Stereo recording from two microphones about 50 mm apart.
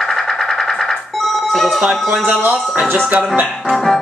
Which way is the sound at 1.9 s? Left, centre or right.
Centre.